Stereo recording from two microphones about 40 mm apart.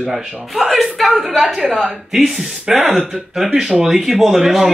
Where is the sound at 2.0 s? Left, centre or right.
Centre.